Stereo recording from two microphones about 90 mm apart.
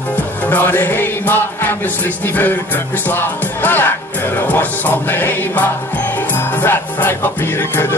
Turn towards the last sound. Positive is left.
turn(degrees=25)  # may be behind; listen again after turning